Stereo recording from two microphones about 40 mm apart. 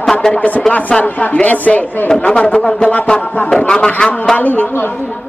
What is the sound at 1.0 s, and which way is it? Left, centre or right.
Speech, left.